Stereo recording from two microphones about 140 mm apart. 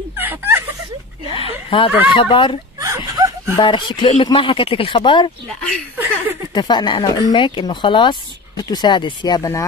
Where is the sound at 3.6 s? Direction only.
35° left (ahead or behind).